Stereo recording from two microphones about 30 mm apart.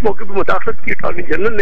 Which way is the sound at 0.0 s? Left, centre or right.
Centre.